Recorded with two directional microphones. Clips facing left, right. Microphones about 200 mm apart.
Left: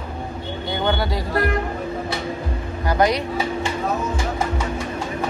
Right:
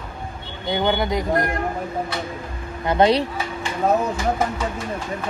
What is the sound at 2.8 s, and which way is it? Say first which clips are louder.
Speech: right 2 dB; 25° right (ahead or behind).